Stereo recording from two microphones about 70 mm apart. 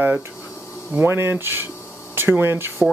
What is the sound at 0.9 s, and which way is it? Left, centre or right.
Speech, right.